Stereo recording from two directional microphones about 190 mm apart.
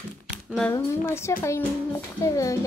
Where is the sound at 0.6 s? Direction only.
10° left (ahead or behind).